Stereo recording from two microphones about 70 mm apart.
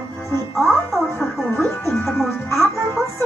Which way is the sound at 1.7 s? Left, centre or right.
Left.